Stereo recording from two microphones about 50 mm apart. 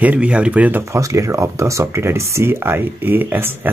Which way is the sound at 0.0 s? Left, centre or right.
Right.